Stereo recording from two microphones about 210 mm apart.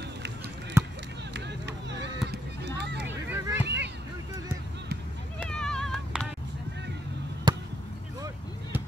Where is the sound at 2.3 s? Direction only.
55° right (ahead or behind).